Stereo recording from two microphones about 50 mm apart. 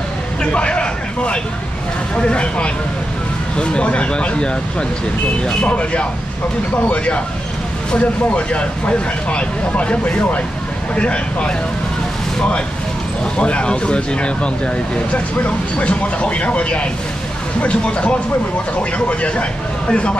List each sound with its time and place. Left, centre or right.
0.4 s a sound: left
2.1 s speech: left
7.9 s speech: left
13.4 s speech: left